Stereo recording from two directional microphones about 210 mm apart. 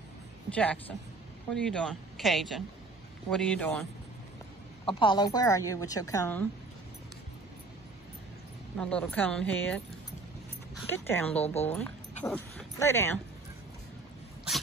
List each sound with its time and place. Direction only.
0.5 s speech: 5° left (ahead or behind)
4.8 s a woman's voice: 20° left (ahead or behind)
8.7 s speech: 5° left (ahead or behind)
10.9 s a woman's voice: 10° left (ahead or behind)